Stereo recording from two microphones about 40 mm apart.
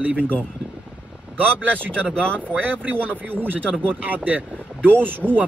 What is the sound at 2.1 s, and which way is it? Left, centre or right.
Speech, left.